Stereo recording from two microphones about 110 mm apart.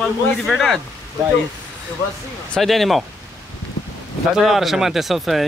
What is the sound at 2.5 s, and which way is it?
Speech, centre (ahead or behind).